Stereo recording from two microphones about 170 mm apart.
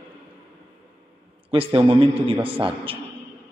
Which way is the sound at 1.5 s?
35° right (ahead or behind).